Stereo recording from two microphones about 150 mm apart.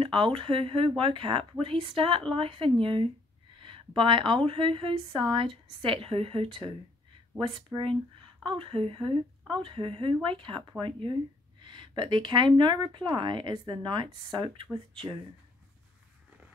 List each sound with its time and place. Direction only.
0.0 s speech: 35° right (ahead or behind)
3.5 s a sound: 35° right (ahead or behind)
4.5 s speech: 35° right (ahead or behind)